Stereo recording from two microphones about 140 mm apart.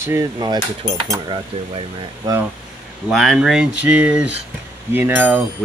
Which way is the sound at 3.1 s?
Centre (ahead or behind).